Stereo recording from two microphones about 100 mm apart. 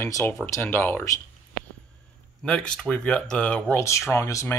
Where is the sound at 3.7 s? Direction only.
30° left (ahead or behind).